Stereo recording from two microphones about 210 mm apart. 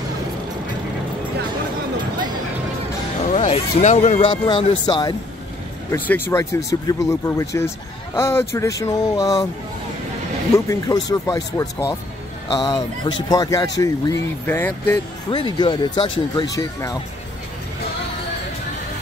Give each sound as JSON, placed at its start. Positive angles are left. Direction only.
{"t": 3.3, "sound": "speech", "side_deg": 35}
{"t": 4.3, "sound": "speech", "side_deg": 25}
{"t": 5.9, "sound": "speech", "side_deg": 10}
{"t": 10.7, "sound": "speech", "side_deg": 15}
{"t": 15.2, "sound": "speech", "side_deg": 20}